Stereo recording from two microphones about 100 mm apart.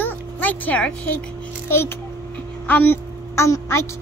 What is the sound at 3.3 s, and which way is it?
Speech, 30° left (ahead or behind).